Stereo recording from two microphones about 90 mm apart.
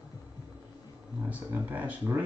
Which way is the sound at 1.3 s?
20° right (ahead or behind).